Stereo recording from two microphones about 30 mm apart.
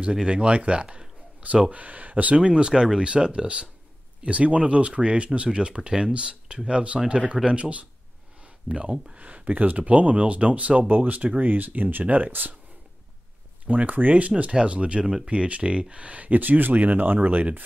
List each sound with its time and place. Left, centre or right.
0.3 s speech: right
1.7 s speech: right
2.5 s speech: right
4.2 s speech: right
8.6 s speech: right
8.9 s speech: right
9.2 s speech: right
10.9 s speech: right
12.0 s speech: right
13.7 s speech: right
14.5 s speech: right
16.3 s speech: right